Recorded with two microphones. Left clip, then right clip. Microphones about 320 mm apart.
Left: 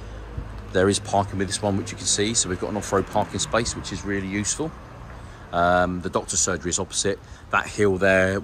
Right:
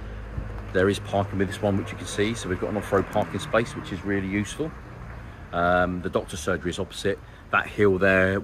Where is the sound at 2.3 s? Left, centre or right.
Centre.